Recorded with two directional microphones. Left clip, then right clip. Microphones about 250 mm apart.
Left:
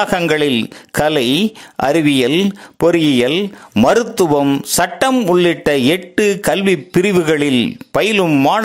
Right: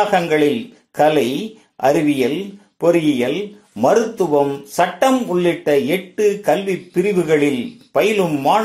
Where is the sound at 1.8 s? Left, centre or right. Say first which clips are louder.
Left 2 dB; left.